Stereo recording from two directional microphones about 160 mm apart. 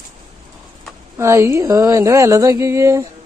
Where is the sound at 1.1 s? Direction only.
15° right (ahead or behind).